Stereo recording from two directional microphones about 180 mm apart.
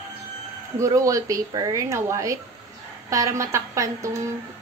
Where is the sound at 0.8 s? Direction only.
20° right (ahead or behind).